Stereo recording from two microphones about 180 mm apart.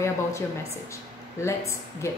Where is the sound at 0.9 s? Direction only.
15° left (ahead or behind).